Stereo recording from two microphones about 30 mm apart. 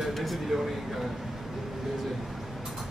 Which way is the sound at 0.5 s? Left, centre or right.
Centre.